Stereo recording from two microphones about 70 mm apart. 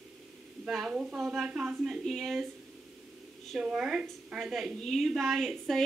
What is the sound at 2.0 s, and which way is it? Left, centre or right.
Speech, centre.